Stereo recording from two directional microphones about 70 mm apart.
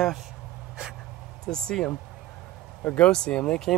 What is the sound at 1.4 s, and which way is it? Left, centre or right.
Speech, centre.